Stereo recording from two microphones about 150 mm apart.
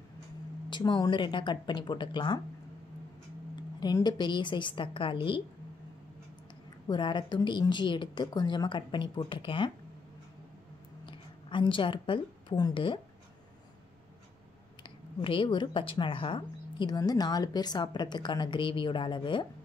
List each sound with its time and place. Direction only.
0.7 s speech: 30° left (ahead or behind)
3.8 s speech: 30° left (ahead or behind)
6.9 s speech: 30° left (ahead or behind)
11.1 s a woman's voice: 35° left (ahead or behind)
14.8 s speech: 35° left (ahead or behind)